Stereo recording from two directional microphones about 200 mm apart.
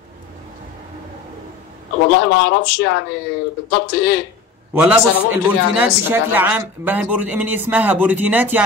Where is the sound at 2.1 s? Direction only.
60° left (ahead or behind).